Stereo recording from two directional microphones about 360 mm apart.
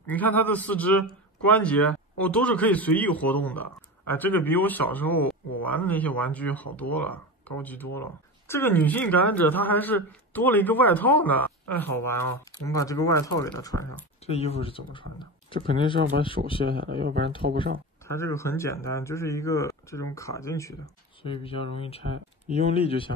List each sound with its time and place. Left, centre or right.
0.0 s speech: centre
17.0 s speech: right
18.0 s speech: centre